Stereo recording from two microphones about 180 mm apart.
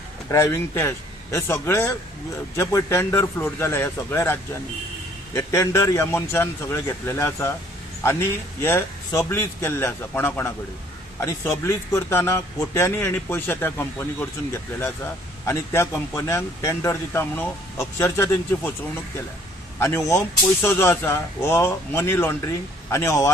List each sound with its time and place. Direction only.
0.3 s a man's voice: 15° left (ahead or behind)
19.8 s a man's voice: 15° left (ahead or behind)